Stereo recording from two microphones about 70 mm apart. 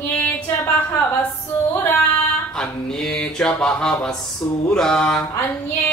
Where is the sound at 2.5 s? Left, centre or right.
Centre.